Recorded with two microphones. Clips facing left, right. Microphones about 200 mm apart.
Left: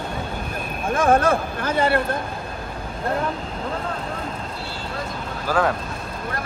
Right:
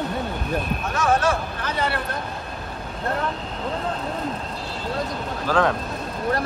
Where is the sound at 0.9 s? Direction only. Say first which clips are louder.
Left 4 dB; 50° left (ahead or behind).